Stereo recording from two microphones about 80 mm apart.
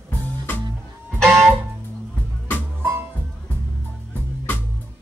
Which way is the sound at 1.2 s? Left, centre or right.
Centre.